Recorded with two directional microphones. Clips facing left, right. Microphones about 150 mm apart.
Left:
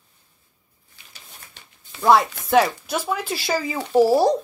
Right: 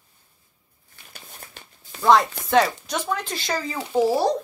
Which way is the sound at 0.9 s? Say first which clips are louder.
Right 3 dB; 50° right (ahead or behind).